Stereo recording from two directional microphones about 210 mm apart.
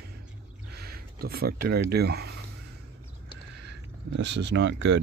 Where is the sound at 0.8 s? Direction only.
45° right (ahead or behind).